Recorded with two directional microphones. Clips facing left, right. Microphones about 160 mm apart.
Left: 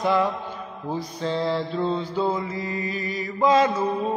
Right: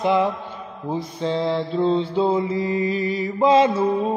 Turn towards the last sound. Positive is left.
turn(degrees=-30)  # may be behind; listen again after turning